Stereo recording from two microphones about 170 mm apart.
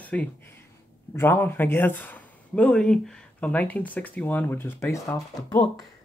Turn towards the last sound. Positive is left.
turn(degrees=20)  # may be behind; listen again after turning